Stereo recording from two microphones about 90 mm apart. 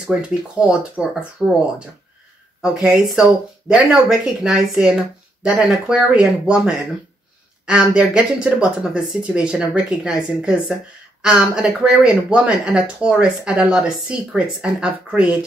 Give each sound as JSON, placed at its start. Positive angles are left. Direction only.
{"t": 0.0, "sound": "speech", "side_deg": -10}
{"t": 1.4, "sound": "speech", "side_deg": -50}
{"t": 2.6, "sound": "speech", "side_deg": -10}